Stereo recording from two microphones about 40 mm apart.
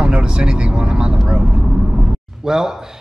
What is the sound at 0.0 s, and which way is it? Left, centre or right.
Speech, right.